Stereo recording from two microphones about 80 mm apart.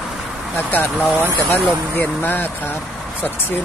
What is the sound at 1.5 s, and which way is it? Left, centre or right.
Speech, left.